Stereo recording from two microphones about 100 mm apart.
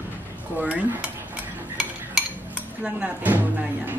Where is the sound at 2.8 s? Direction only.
15° right (ahead or behind).